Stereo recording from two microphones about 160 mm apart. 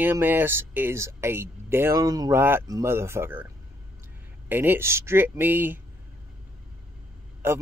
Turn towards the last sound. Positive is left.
turn(degrees=-15)  # may be behind; listen again after turning